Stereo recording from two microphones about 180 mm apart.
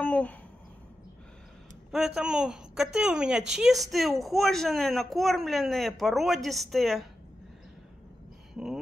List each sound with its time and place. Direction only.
0.0 s a sound: 10° left (ahead or behind)
1.9 s a woman's voice: centre (ahead or behind)
8.6 s a woman's voice: centre (ahead or behind)